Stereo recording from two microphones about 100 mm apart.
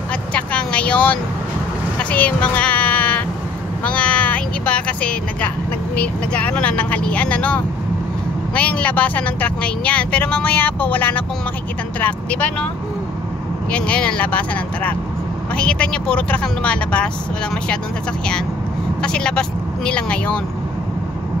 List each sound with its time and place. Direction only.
0.3 s vehicle: 10° left (ahead or behind)
2.0 s sheep: 15° left (ahead or behind)
3.8 s cat: 10° left (ahead or behind)
5.9 s speech: 15° left (ahead or behind)
13.7 s speech: 10° left (ahead or behind)
18.9 s speech: 10° left (ahead or behind)